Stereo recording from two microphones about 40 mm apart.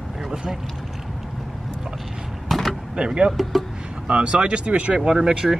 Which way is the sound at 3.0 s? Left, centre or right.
Right.